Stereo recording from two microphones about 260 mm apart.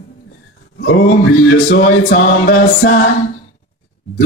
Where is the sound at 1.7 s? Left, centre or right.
Left.